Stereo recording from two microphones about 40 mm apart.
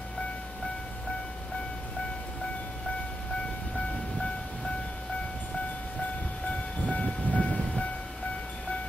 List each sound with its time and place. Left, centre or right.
6.9 s train: left